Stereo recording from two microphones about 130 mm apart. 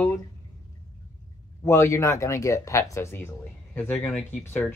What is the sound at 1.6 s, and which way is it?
Speech, 20° left (ahead or behind).